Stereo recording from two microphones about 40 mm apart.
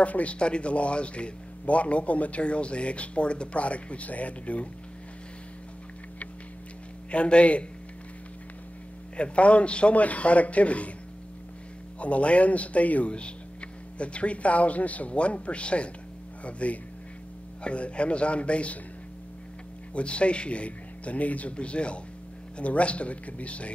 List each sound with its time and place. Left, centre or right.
0.0 s speech: left
7.1 s speech: left
9.1 s speech: left
12.0 s speech: left
19.9 s speech: left